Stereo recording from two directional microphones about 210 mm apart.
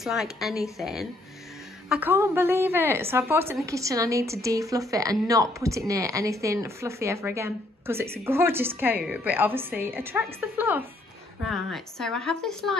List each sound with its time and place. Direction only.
0.0 s a woman's voice: centre (ahead or behind)